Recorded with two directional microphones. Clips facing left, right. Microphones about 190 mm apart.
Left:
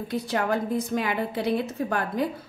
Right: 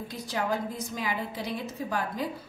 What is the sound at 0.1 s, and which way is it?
A woman's voice, 60° left (ahead or behind).